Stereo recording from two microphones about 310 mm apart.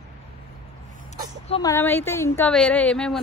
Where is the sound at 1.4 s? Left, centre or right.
Centre.